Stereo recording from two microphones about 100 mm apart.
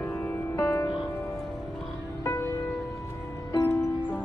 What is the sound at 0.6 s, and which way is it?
Music, 25° left (ahead or behind).